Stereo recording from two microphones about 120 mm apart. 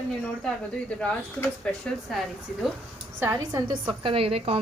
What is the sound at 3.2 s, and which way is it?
Speech, 30° right (ahead or behind).